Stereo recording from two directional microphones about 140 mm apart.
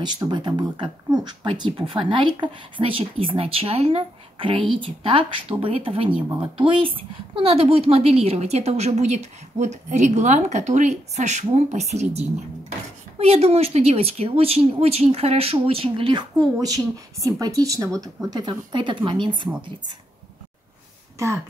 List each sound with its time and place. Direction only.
0.0 s a woman's voice: 30° right (ahead or behind)